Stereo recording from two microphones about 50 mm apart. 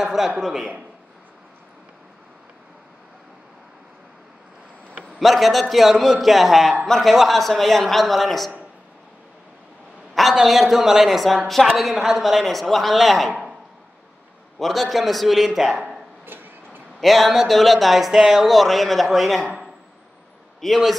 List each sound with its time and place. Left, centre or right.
0.0 s a man's voice: centre
5.2 s a woman's voice: centre
10.3 s a woman's voice: centre
14.6 s a woman's voice: centre
16.3 s a sound: right
17.0 s a woman's voice: centre
20.6 s a woman's voice: centre